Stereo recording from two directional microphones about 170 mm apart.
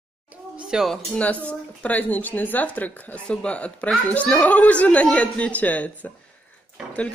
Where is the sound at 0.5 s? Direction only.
5° right (ahead or behind).